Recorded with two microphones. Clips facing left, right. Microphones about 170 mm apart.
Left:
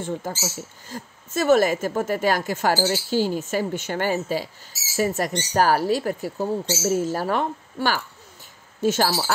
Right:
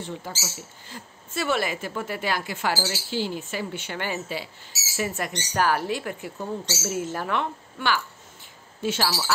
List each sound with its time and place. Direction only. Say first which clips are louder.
0.0 s speech: left 6 dB; 50° left (ahead or behind)